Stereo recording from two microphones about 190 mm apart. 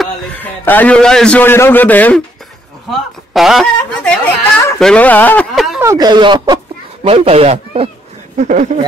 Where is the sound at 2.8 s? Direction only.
Centre (ahead or behind).